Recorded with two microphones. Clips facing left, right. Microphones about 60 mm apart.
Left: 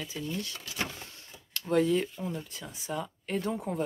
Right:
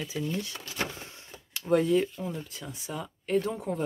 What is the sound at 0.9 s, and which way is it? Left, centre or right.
Printer, right.